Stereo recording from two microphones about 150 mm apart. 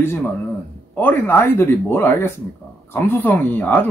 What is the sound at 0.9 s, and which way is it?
Speech, 15° left (ahead or behind).